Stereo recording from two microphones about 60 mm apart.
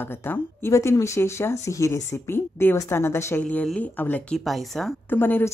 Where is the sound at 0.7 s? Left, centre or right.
Left.